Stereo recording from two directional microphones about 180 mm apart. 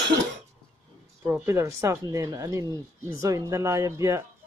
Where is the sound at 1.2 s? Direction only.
15° right (ahead or behind).